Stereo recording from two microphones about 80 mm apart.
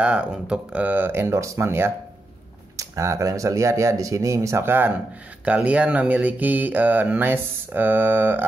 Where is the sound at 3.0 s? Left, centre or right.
Right.